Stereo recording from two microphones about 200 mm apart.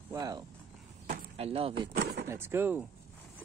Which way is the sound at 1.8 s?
55° right (ahead or behind).